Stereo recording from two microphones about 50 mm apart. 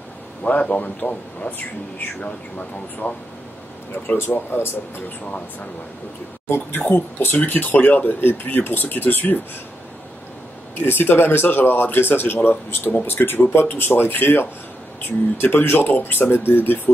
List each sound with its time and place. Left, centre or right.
0.4 s speech: left
4.3 s speech: left
6.9 s speech: left
10.8 s speech: left